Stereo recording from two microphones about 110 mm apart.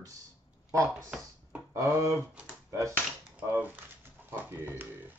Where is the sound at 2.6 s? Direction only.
25° right (ahead or behind).